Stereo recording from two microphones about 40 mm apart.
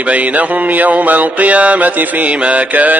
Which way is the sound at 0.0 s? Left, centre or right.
Right.